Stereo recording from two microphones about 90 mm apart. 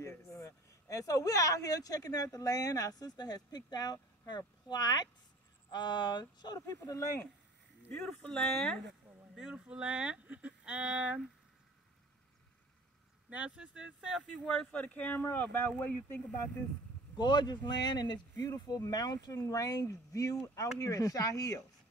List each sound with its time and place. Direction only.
0.3 s speech: 35° left (ahead or behind); by 6.6 s 50° left (ahead or behind)
6.6 s speech: 35° left (ahead or behind)
8.0 s speech: 5° left (ahead or behind)
9.3 s speech: 10° right (ahead or behind)
13.3 s speech: 15° right (ahead or behind)
14.4 s speech: 5° left (ahead or behind)
14.7 s speech: 15° left (ahead or behind)
17.2 s speech: 55° left (ahead or behind)
18.3 s speech: 30° left (ahead or behind)
18.7 s speech: 45° left (ahead or behind)